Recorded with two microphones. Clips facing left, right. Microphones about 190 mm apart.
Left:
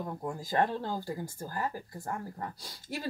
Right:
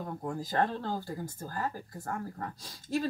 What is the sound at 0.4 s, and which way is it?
Speech, 15° left (ahead or behind).